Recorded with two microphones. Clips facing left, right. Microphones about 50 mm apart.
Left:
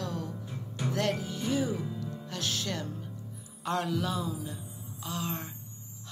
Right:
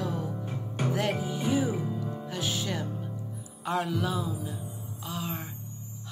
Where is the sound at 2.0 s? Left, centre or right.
Centre.